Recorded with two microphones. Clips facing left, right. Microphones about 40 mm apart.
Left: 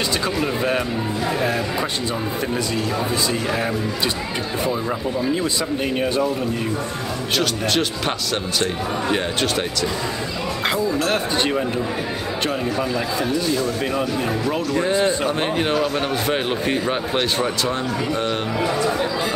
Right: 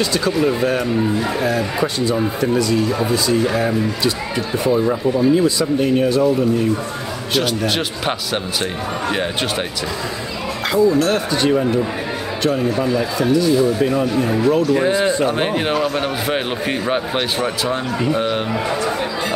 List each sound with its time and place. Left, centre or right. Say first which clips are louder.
0.2 s speech: right 5 dB; left
5.6 s speech: right 6 dB; centre
7.3 s speech: right 2 dB; centre
10.7 s speech: right 7 dB; left
14.7 s speech: right 3 dB; centre